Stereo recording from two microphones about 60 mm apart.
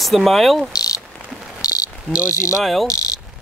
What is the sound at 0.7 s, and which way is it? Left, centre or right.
Cricket, left.